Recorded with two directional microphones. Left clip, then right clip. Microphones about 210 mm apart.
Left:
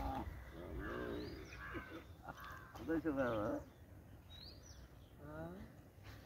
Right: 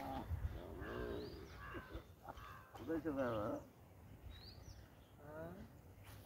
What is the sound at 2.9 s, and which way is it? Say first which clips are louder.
Speech: left 3 dB; 50° left (ahead or behind).